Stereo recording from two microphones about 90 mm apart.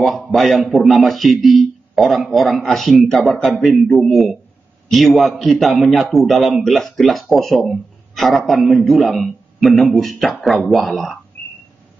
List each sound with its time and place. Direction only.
0.0 s a man's voice: centre (ahead or behind)
0.4 s a man's voice: 10° left (ahead or behind)
0.7 s speech: centre (ahead or behind)
3.5 s a man's voice: 10° right (ahead or behind)
3.8 s speech: 5° left (ahead or behind)